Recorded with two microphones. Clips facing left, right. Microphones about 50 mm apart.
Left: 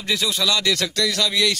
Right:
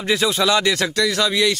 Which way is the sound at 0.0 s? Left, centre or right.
Right.